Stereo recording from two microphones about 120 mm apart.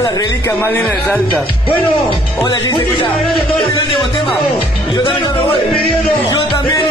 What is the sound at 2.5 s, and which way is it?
Speech, 40° left (ahead or behind).